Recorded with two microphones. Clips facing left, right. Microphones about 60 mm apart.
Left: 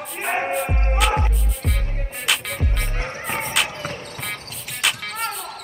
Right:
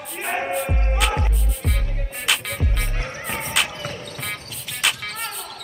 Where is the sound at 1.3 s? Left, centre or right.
Centre.